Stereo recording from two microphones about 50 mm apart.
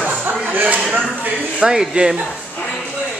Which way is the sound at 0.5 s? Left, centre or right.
Right.